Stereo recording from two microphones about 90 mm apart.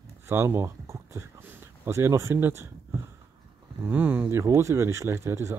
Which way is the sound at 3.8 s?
25° right (ahead or behind).